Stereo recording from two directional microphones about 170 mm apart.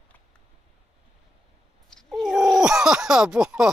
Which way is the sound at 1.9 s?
Centre (ahead or behind).